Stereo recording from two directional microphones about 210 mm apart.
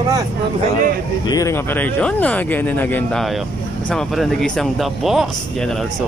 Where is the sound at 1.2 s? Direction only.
15° left (ahead or behind).